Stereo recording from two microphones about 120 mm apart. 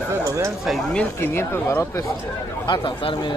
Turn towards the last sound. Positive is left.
turn(degrees=45)  # may be behind; listen again after turning